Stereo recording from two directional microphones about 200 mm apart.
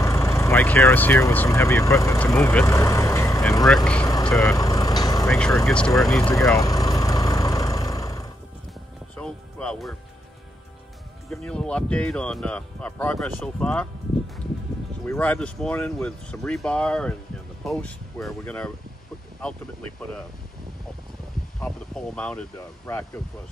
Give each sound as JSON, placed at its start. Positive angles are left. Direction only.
{"t": 0.0, "sound": "speech", "side_deg": 15}
{"t": 3.6, "sound": "speech", "side_deg": 5}
{"t": 4.1, "sound": "speech", "side_deg": 15}
{"t": 4.6, "sound": "vehicle", "side_deg": 15}
{"t": 5.7, "sound": "speech", "side_deg": 5}
{"t": 6.3, "sound": "vehicle", "side_deg": 15}
{"t": 9.1, "sound": "music", "side_deg": 5}
{"t": 11.2, "sound": "speech", "side_deg": 5}
{"t": 15.0, "sound": "speech", "side_deg": 5}
{"t": 21.5, "sound": "speech", "side_deg": 5}